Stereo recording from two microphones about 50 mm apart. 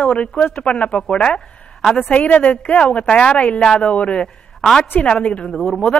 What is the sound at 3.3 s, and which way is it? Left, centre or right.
A woman's voice, left.